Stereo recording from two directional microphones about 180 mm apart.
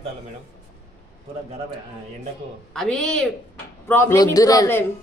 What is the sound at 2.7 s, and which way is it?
A woman's voice, 5° left (ahead or behind).